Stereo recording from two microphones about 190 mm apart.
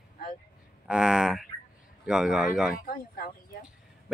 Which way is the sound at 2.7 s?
50° left (ahead or behind).